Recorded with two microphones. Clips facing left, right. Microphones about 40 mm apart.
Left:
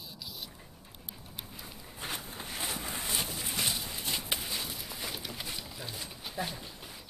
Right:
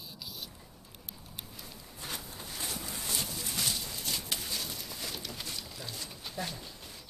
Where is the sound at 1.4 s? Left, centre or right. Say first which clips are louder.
Left 1 dB; centre.